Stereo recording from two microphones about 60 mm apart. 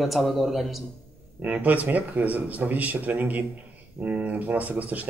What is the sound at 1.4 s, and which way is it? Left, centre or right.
A man's voice, right.